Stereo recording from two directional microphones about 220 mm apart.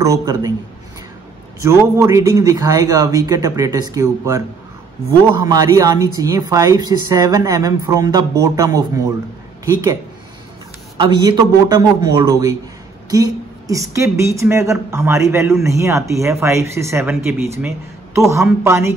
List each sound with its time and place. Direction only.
0.0 s speech: 15° right (ahead or behind)
1.6 s speech: 15° right (ahead or behind)
11.0 s a woman's voice: 20° right (ahead or behind)